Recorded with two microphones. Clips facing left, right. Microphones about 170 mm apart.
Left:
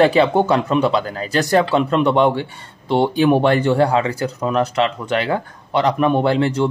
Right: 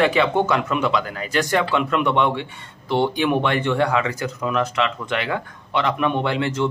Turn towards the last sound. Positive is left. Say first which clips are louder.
# left 5 dB
turn(degrees=35)  # may be behind; listen again after turning